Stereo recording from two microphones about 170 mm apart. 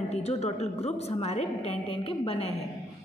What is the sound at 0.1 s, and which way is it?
A woman's voice, 40° left (ahead or behind).